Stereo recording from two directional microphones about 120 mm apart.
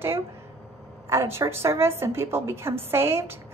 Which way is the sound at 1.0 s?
20° right (ahead or behind).